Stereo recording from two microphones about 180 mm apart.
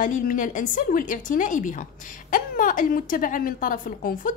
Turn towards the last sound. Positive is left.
turn(degrees=50)  # may be behind; listen again after turning